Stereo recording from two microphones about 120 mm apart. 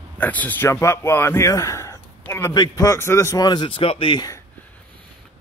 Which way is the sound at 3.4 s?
40° left (ahead or behind).